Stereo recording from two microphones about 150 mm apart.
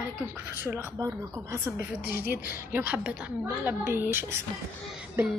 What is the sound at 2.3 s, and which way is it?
Speech, 90° left.